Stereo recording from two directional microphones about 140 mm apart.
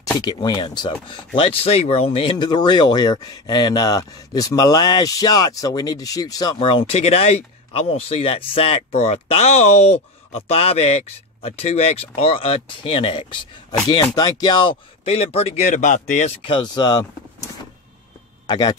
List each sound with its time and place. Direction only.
0.0 s speech: 30° left (ahead or behind)
18.5 s speech: 30° left (ahead or behind)